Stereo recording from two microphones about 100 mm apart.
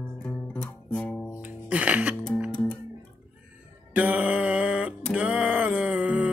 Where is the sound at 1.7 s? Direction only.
15° right (ahead or behind).